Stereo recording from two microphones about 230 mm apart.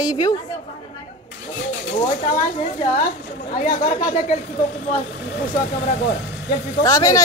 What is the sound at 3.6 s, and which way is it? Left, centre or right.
Speech, left.